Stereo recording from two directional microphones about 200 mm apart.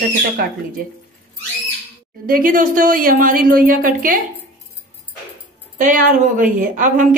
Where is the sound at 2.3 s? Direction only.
45° right (ahead or behind).